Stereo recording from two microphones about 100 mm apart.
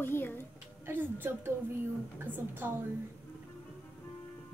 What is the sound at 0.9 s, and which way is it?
A woman's voice, 20° right (ahead or behind).